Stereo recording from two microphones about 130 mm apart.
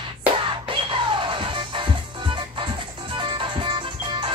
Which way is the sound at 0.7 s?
40° right (ahead or behind).